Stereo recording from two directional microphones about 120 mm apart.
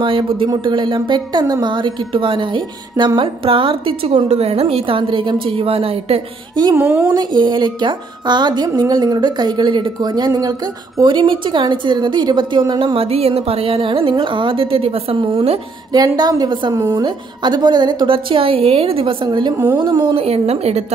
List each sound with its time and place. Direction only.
0.0 s a woman's voice: 45° right (ahead or behind)
6.7 s a woman's voice: 15° right (ahead or behind)
7.1 s a woman's voice: 40° right (ahead or behind)
15.9 s a woman's voice: 35° right (ahead or behind); by 19.1 s 50° right (ahead or behind)
19.2 s a woman's voice: 40° right (ahead or behind)
19.5 s a woman's voice: 15° right (ahead or behind)
19.8 s a woman's voice: 45° right (ahead or behind)
20.2 s speech: 60° right (ahead or behind)